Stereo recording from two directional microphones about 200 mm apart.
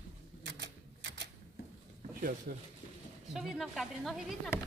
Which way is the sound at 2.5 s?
45° right (ahead or behind).